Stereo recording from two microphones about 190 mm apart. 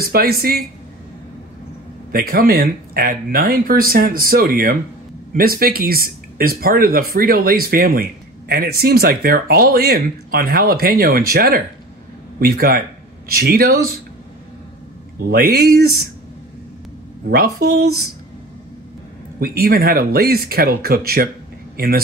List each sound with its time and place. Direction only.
0.0 s speech: 50° right (ahead or behind)
2.1 s speech: 50° right (ahead or behind)
15.3 s speech: 50° right (ahead or behind)
17.3 s speech: 55° right (ahead or behind)
19.4 s speech: 50° right (ahead or behind)